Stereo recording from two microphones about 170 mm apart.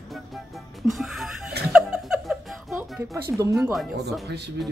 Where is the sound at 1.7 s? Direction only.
5° right (ahead or behind).